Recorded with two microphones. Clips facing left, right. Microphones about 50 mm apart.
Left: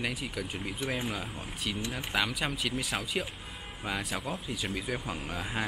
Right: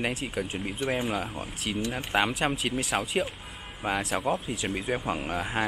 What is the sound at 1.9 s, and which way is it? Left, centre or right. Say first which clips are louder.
Speech: right 5 dB; right.